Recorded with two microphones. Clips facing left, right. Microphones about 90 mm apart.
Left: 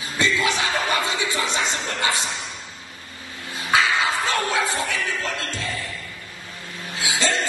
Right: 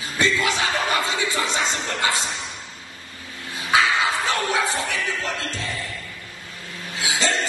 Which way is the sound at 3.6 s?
20° right (ahead or behind).